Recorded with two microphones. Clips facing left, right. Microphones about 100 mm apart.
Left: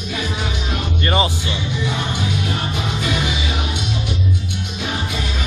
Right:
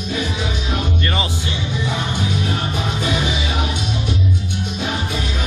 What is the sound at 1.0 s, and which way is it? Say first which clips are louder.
Music: left 4 dB; 25° left (ahead or behind).